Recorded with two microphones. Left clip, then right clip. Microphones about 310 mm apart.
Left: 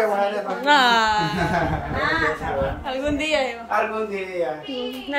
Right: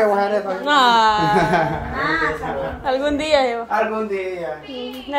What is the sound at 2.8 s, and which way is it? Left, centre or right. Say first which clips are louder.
Speech: right 5 dB; centre.